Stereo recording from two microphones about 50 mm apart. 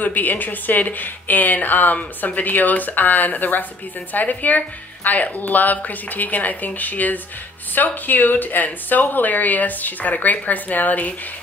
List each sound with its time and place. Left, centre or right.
0.0 s speech: left